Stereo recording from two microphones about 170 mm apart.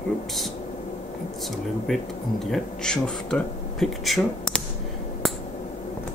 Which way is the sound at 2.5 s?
5° left (ahead or behind).